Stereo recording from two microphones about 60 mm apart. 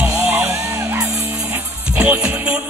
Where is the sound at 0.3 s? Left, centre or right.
Right.